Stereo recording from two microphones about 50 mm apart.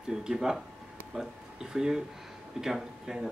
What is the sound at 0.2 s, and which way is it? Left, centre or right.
Speech, centre.